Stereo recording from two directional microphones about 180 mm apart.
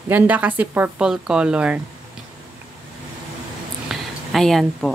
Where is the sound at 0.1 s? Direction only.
10° right (ahead or behind).